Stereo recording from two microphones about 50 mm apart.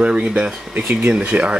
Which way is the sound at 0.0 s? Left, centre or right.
Right.